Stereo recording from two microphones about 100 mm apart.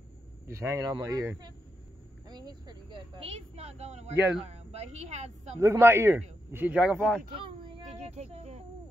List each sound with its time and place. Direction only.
0.5 s speech: 30° right (ahead or behind)
3.2 s a woman's voice: 85° right
5.6 s a man's voice: 30° right (ahead or behind); by 7.2 s 10° right (ahead or behind)
7.3 s a sound: 55° right (ahead or behind)
8.0 s speech: 90° right